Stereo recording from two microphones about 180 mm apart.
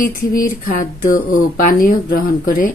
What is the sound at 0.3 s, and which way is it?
Speech, 50° left (ahead or behind).